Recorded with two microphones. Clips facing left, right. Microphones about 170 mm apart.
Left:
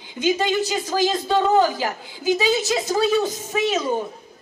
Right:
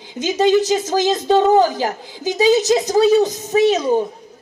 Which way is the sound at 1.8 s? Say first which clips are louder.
Right 3 dB; 40° right (ahead or behind).